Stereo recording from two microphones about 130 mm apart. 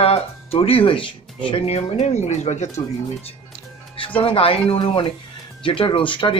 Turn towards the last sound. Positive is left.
turn(degrees=40)  # may be behind; listen again after turning